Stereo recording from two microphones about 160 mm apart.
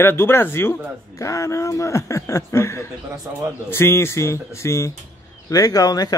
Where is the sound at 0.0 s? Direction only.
15° left (ahead or behind).